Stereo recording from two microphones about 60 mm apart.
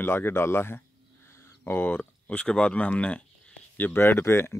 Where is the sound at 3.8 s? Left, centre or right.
Left.